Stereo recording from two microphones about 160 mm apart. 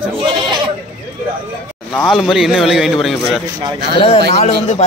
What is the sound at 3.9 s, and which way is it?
Speech, 35° left (ahead or behind).